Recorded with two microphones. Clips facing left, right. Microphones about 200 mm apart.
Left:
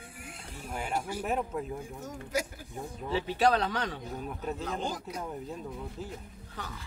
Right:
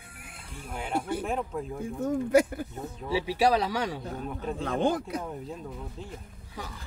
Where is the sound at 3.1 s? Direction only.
10° right (ahead or behind).